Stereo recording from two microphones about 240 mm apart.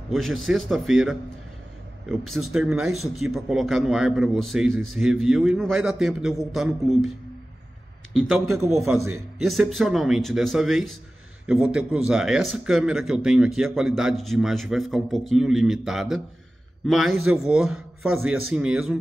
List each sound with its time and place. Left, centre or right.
0.1 s a man's voice: centre
2.5 s a man's voice: centre
4.6 s a man's voice: right
4.9 s a man's voice: centre
8.1 s a man's voice: centre
8.9 s a man's voice: right
9.4 s a man's voice: centre